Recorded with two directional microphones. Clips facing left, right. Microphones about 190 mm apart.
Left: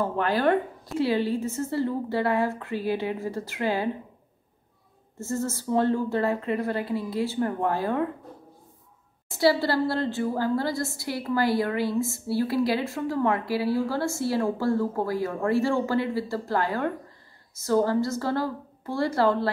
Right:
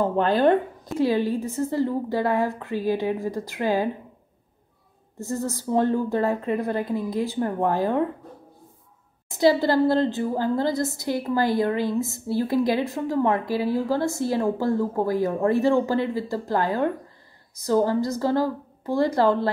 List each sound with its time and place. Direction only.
0.0 s a woman's voice: 25° right (ahead or behind)
5.1 s speech: 15° right (ahead or behind)
9.3 s a woman's voice: 20° right (ahead or behind)